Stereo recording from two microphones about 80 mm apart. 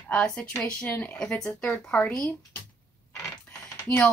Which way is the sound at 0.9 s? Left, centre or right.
Left.